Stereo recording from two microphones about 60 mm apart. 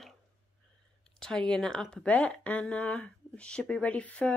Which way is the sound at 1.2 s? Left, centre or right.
Centre.